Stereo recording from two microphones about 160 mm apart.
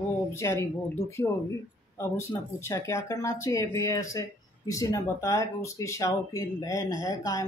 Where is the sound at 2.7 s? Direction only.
15° left (ahead or behind).